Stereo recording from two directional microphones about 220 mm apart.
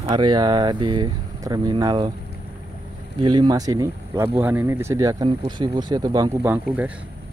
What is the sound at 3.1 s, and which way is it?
Speech, 20° right (ahead or behind).